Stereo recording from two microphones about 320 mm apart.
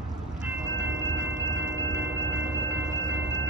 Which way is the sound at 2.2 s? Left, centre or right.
Right.